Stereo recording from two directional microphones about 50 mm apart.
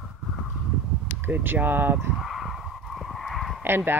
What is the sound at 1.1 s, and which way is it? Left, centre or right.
Speech, right.